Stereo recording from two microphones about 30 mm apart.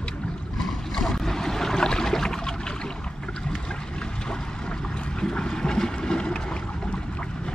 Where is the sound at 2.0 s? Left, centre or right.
Centre.